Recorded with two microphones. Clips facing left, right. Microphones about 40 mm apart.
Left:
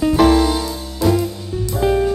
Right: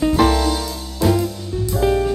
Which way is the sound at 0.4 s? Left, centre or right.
Centre.